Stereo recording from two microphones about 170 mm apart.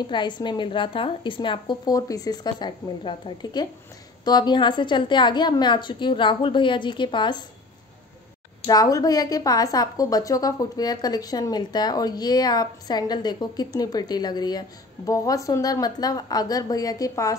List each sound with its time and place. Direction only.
0.0 s a woman's voice: 25° left (ahead or behind)
8.6 s a woman's voice: 20° left (ahead or behind)